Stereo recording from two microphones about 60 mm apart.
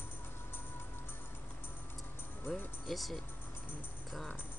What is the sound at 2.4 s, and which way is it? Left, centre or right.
Music, left.